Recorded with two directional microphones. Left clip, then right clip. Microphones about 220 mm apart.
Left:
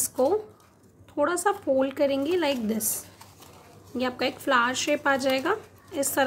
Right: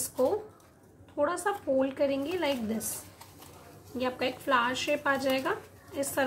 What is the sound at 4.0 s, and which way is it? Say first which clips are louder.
Speech: left 3 dB; 50° left (ahead or behind).